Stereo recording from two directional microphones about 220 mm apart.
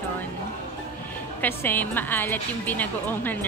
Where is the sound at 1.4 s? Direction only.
10° left (ahead or behind).